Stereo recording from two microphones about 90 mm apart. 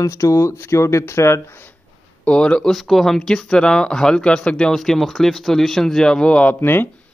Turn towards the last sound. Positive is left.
turn(degrees=25)  # may be behind; listen again after turning